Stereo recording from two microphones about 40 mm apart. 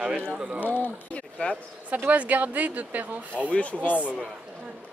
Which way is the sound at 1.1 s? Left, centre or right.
Left.